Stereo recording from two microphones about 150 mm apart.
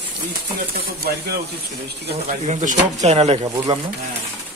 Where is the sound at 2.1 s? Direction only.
50° right (ahead or behind).